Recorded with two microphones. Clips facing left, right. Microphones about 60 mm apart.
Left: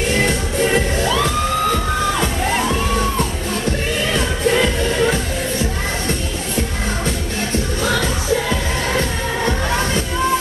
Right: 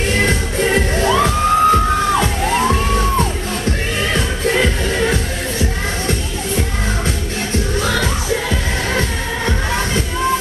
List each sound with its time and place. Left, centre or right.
1.0 s music: right